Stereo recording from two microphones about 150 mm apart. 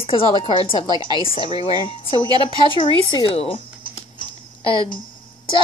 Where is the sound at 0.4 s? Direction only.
35° left (ahead or behind).